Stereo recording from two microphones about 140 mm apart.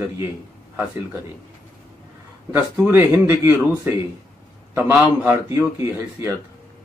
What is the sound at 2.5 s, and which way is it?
A man's voice, 15° right (ahead or behind).